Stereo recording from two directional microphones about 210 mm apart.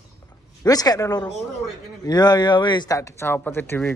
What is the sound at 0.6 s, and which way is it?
Speech, 20° left (ahead or behind).